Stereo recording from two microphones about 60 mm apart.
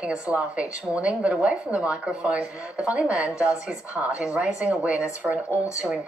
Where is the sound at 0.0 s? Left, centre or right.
Centre.